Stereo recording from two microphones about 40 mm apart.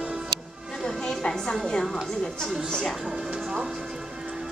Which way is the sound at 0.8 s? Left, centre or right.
Centre.